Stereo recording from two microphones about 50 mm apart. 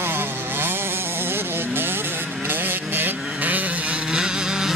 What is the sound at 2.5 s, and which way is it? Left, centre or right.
Vehicle, right.